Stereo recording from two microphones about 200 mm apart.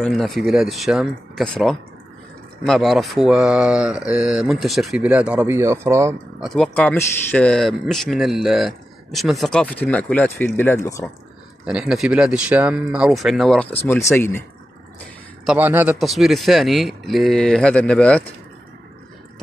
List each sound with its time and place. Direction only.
0.0 s speech: centre (ahead or behind)
2.6 s speech: centre (ahead or behind)
6.5 s speech: 5° left (ahead or behind)
11.6 s speech: 5° right (ahead or behind)
15.4 s speech: 10° right (ahead or behind)